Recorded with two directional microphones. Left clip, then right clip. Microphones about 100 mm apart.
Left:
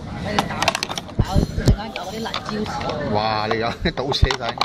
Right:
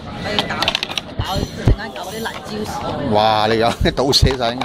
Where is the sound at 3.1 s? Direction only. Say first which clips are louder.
Right 8 dB; 50° right (ahead or behind).